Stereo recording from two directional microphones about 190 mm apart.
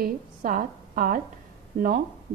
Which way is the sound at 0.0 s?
45° right (ahead or behind).